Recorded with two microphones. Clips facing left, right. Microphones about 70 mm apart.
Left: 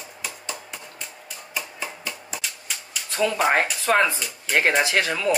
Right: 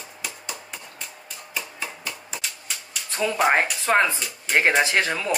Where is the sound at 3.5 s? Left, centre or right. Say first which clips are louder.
Even; right.